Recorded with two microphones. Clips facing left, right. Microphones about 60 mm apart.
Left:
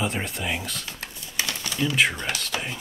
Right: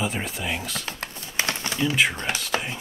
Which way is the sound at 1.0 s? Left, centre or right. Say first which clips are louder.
Right 3 dB; right.